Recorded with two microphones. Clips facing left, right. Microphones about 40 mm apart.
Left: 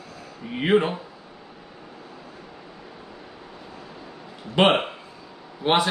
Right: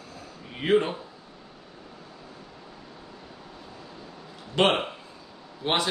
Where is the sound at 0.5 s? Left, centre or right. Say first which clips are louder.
Left 3 dB; left.